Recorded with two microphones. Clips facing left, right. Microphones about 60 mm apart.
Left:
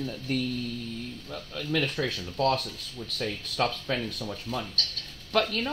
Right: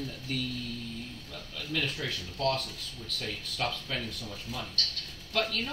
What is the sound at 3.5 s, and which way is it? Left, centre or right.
Speech, left.